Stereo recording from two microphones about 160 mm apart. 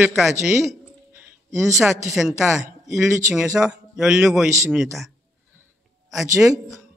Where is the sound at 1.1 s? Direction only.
20° right (ahead or behind).